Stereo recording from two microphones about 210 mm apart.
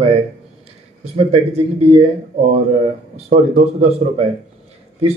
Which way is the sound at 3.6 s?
30° right (ahead or behind).